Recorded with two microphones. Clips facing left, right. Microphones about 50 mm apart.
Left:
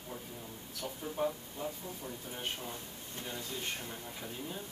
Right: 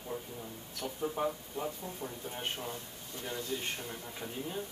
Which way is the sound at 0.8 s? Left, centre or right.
Right.